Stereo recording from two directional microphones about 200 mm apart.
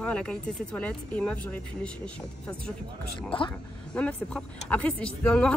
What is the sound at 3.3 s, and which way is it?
Speech, 25° left (ahead or behind).